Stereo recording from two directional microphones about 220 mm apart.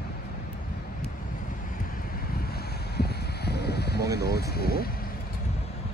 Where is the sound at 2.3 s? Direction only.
45° left (ahead or behind).